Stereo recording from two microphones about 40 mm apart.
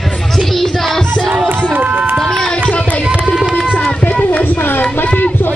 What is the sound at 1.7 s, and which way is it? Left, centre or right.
Run, right.